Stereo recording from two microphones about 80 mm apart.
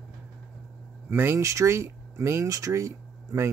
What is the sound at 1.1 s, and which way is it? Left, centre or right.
Speech, right.